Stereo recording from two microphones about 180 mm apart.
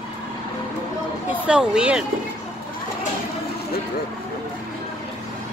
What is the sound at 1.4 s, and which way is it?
Speech, 5° right (ahead or behind).